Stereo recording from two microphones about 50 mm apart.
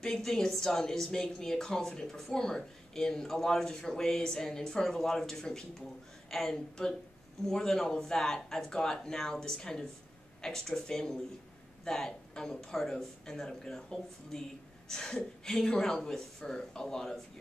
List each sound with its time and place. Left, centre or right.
0.0 s a woman's voice: centre